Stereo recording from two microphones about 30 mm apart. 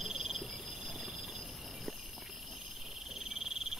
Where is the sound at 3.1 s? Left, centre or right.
Centre.